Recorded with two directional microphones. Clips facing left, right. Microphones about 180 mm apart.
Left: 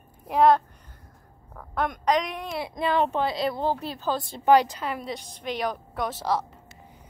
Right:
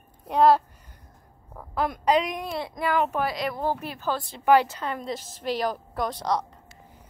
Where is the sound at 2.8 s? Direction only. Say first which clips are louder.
Left 1 dB; 25° left (ahead or behind).